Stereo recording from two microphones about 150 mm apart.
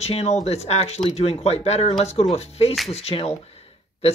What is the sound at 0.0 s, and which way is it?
Speech, 45° left (ahead or behind).